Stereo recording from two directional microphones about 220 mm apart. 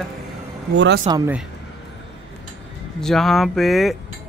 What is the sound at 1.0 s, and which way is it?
Speech, 15° right (ahead or behind).